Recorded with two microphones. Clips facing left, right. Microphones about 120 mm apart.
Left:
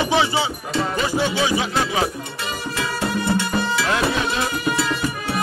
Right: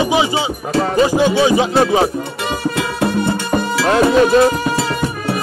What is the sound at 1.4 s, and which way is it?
Speech, 35° right (ahead or behind).